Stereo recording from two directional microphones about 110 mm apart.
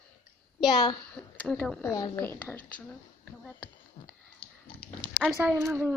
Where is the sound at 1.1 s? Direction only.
10° left (ahead or behind).